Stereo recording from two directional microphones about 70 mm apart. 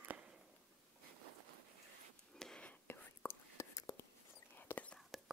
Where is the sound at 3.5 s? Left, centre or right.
Left.